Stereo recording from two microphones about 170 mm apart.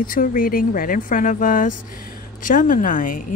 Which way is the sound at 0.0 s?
55° left (ahead or behind).